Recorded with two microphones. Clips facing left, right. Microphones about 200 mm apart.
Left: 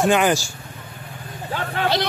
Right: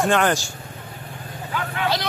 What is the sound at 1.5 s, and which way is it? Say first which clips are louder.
Vehicle: left 2 dB; 35° left (ahead or behind).